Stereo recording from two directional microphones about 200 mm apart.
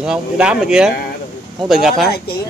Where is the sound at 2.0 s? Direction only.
50° left (ahead or behind).